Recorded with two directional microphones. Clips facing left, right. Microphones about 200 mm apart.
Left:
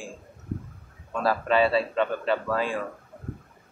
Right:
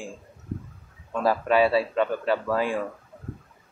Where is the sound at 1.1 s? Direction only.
15° right (ahead or behind).